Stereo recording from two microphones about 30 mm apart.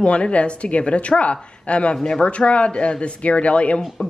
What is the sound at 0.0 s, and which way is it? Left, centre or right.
Speech, left.